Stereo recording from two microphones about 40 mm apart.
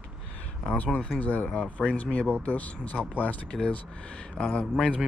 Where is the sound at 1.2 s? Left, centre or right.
Left.